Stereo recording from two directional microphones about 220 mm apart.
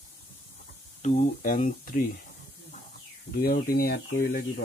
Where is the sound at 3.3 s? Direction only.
45° left (ahead or behind).